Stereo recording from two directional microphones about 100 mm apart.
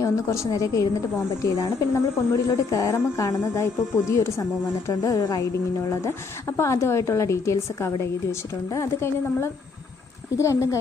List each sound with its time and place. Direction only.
0.0 s a woman's voice: 30° left (ahead or behind)